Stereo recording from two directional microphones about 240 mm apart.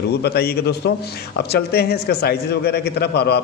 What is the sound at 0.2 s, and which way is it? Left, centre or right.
A man's voice, left.